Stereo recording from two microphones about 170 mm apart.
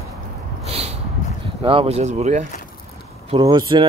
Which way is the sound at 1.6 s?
30° right (ahead or behind).